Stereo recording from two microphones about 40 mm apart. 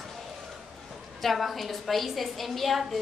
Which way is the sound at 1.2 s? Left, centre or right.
Centre.